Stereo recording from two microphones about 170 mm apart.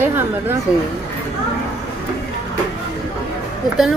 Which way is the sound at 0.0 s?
10° right (ahead or behind).